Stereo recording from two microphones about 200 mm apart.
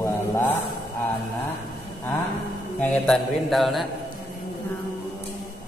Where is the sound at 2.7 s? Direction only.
5° left (ahead or behind).